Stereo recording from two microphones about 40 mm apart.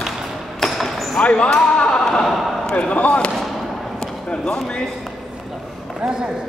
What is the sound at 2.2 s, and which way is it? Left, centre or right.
Speech, centre.